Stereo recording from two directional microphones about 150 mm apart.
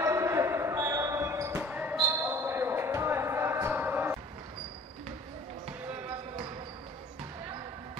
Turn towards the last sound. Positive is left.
turn(degrees=-35)  # may be behind; listen again after turning